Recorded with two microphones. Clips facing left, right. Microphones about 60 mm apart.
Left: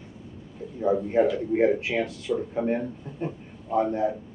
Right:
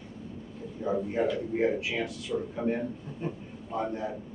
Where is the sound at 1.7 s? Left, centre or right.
Left.